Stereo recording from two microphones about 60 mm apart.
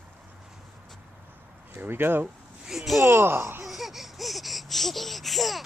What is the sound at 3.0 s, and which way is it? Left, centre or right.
Speech, right.